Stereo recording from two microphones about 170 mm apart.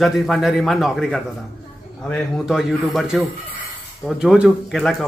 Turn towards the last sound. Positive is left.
turn(degrees=0)  # may be behind; listen again after turning